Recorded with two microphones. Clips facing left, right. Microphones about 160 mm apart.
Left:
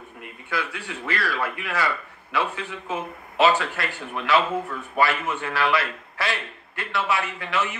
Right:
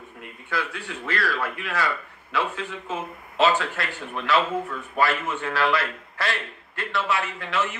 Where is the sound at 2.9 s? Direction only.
65° left (ahead or behind).